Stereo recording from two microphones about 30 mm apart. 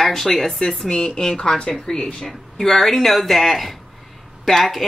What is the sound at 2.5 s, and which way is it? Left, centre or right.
Speech, centre.